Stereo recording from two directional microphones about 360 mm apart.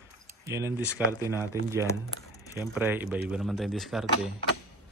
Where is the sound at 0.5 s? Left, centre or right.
Centre.